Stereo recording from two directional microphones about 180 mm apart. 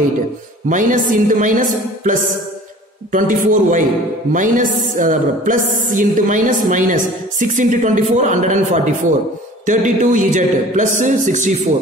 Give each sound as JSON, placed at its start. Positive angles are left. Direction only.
{"t": 0.7, "sound": "music", "side_deg": -45}